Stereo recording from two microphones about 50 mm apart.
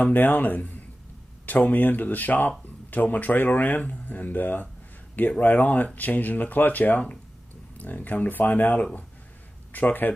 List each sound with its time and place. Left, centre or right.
0.0 s speech: left